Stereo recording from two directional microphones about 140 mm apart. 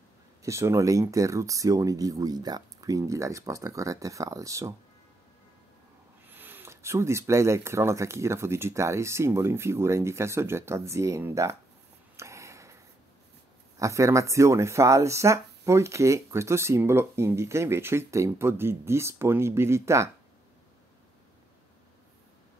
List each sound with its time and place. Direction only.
0.4 s speech: 20° right (ahead or behind)
6.2 s speech: 15° right (ahead or behind)
12.2 s a sound: 20° right (ahead or behind)
13.7 s speech: 20° right (ahead or behind)